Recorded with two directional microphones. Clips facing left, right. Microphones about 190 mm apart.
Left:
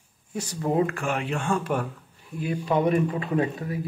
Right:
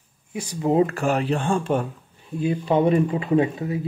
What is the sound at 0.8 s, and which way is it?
Speech, 35° right (ahead or behind).